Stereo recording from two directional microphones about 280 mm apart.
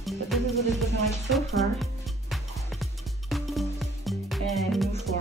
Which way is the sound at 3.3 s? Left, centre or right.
Centre.